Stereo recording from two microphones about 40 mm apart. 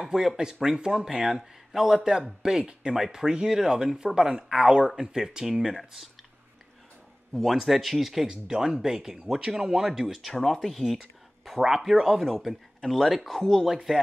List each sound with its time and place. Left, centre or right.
0.0 s a sound: centre
0.7 s speech: centre
7.3 s speech: centre
10.4 s speech: centre
11.6 s speech: centre
13.4 s speech: centre
13.9 s speech: centre